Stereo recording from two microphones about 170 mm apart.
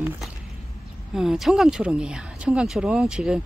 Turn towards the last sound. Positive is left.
turn(degrees=-5)  # may be behind; listen again after turning